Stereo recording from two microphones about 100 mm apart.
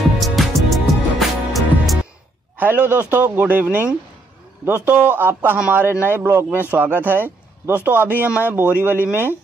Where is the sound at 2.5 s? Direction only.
20° right (ahead or behind).